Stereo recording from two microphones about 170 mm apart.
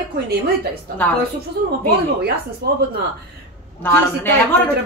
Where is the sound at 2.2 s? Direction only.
65° right (ahead or behind).